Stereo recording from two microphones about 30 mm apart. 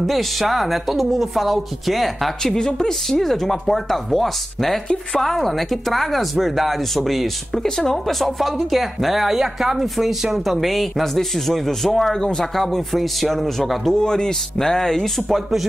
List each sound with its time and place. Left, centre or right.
0.0 s speech: centre
2.4 s a woman's voice: left
3.1 s speech: centre
7.5 s speech: centre
12.2 s a woman's voice: centre
12.5 s speech: centre
13.9 s a woman's voice: left
15.2 s speech: centre